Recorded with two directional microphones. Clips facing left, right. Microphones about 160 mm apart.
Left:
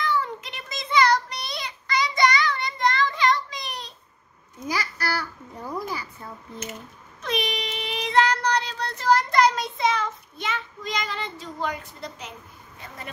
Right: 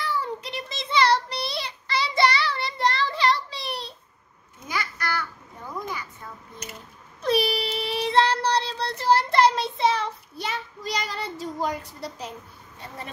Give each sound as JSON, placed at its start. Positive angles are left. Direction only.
{"t": 0.0, "sound": "child singing", "side_deg": -35}
{"t": 4.6, "sound": "a sound", "side_deg": 35}
{"t": 7.2, "sound": "child singing", "side_deg": -35}